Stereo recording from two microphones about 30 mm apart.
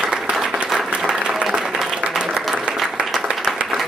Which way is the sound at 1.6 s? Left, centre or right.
Centre.